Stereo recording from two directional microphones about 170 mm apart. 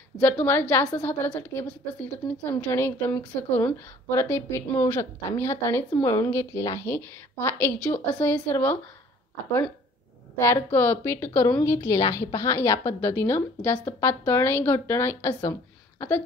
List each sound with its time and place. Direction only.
0.2 s a woman's voice: 10° left (ahead or behind)
10.4 s a woman's voice: 15° left (ahead or behind)